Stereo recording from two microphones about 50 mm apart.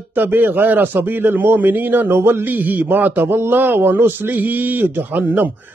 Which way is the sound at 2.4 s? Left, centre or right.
Right.